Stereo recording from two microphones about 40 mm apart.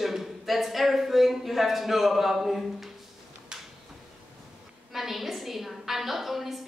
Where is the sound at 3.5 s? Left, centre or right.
Centre.